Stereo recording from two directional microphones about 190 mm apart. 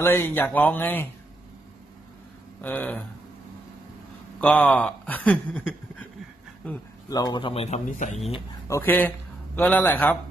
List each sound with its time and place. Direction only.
0.0 s speech: 10° left (ahead or behind)
2.6 s speech: 10° left (ahead or behind)
4.4 s speech: 10° left (ahead or behind)
7.1 s a man's voice: 20° left (ahead or behind); by 8.2 s 40° left (ahead or behind)
8.6 s speech: 15° left (ahead or behind)